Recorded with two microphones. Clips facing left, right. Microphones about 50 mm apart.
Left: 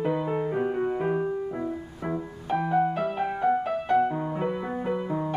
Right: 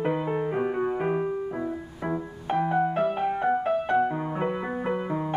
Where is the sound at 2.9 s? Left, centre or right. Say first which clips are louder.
Right 3 dB; right.